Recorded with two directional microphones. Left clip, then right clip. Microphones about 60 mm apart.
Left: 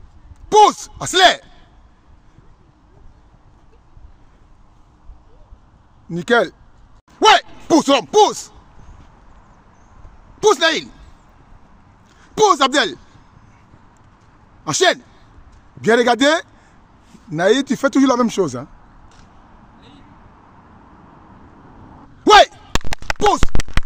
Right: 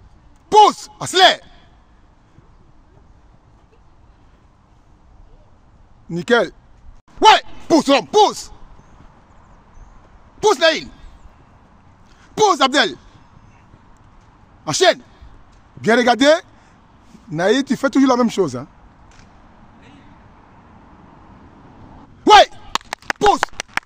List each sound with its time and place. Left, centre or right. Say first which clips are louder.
0.5 s speech: even; centre
6.1 s speech: even; centre
7.1 s a sound: right 1 dB; centre
7.5 s speech: even; centre
10.4 s speech: even; centre
12.2 s speech: left 1 dB; centre
14.6 s a man's voice: right 1 dB; centre
19.8 s vehicle: even; centre